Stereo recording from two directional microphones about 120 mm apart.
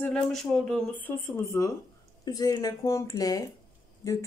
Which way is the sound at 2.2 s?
35° left (ahead or behind).